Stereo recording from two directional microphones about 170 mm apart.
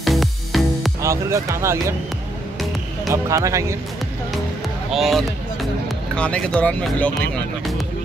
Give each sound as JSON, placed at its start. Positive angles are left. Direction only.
{"t": 0.0, "sound": "music", "side_deg": 0}
{"t": 1.0, "sound": "speech", "side_deg": -15}
{"t": 3.1, "sound": "speech", "side_deg": -20}
{"t": 4.9, "sound": "speech", "side_deg": 0}